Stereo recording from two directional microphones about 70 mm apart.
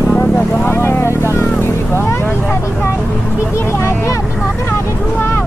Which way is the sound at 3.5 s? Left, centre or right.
Left.